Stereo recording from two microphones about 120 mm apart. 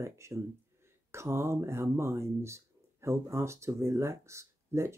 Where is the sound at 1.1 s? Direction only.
20° right (ahead or behind).